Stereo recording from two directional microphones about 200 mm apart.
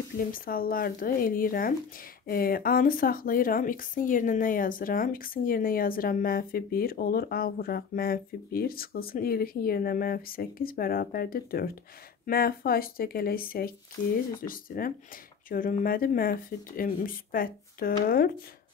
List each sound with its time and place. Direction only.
0.3 s speech: 45° left (ahead or behind)